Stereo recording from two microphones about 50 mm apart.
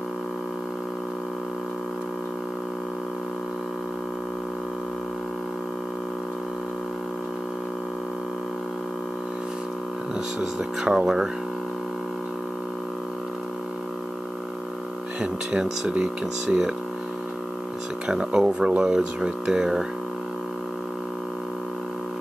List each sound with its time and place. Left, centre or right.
10.6 s speech: centre
15.1 s speech: centre
18.0 s speech: centre